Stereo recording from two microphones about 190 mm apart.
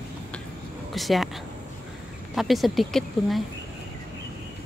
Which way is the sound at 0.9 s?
Centre (ahead or behind).